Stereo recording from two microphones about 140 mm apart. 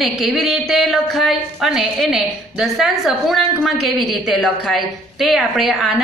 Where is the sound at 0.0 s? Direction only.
Centre (ahead or behind).